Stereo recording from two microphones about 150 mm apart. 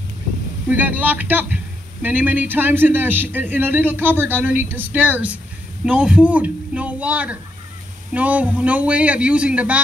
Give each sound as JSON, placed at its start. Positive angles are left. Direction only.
{"t": 0.7, "sound": "a man's voice", "side_deg": -10}